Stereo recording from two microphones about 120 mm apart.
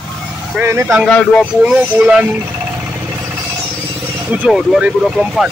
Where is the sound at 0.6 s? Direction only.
20° right (ahead or behind).